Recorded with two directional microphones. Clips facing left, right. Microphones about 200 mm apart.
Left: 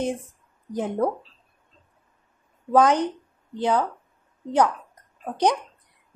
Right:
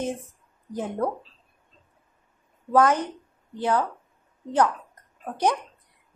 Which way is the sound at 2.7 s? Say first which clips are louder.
Left 2 dB; 15° left (ahead or behind).